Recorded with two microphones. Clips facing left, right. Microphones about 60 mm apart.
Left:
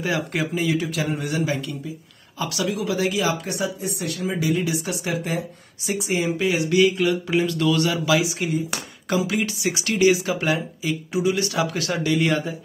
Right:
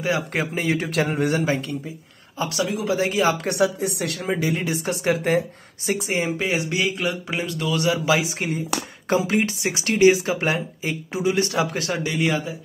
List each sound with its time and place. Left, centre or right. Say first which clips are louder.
0.0 s speech: right 1 dB; right
3.4 s speech: right 5 dB; right
4.4 s speech: left 1 dB; right
5.9 s speech: even; right
12.3 s speech: left 1 dB; centre